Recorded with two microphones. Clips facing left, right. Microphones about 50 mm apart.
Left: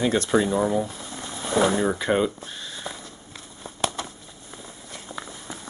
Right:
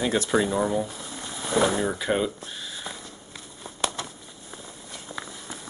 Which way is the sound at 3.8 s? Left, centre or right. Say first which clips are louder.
Left 2 dB; centre.